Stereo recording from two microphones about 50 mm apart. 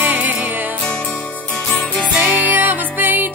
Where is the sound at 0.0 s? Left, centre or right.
Right.